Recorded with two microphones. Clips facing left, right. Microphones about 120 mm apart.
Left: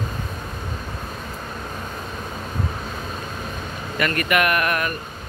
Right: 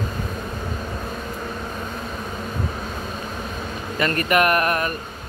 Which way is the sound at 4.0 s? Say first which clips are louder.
Right 2 dB; 35° right (ahead or behind).